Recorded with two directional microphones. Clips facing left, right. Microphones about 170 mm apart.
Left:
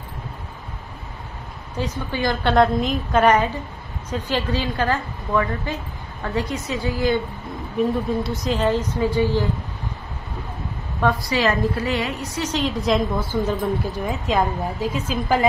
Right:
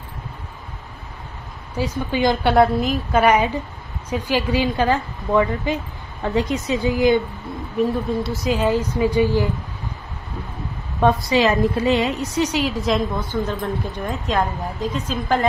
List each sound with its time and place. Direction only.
1.8 s a woman's voice: 15° right (ahead or behind)
7.7 s a woman's voice: centre (ahead or behind)
11.0 s a woman's voice: 25° right (ahead or behind); by 15.4 s 5° left (ahead or behind)